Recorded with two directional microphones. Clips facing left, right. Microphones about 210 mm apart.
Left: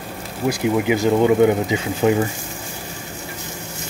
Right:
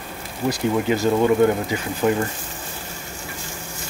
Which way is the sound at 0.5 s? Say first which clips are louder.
Left 2 dB; 10° left (ahead or behind).